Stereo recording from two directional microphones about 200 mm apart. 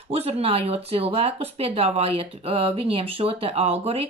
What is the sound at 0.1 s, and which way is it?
Speech, 30° right (ahead or behind).